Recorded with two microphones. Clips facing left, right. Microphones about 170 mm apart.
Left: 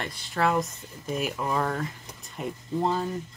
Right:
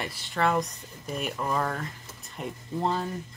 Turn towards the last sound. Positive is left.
turn(degrees=0)  # may be behind; listen again after turning